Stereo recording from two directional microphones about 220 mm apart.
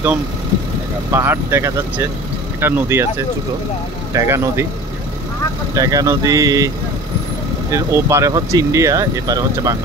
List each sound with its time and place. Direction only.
1.1 s speech: 10° right (ahead or behind)
4.1 s speech: 10° right (ahead or behind)
5.8 s speech: 15° right (ahead or behind)
7.7 s speech: 15° right (ahead or behind)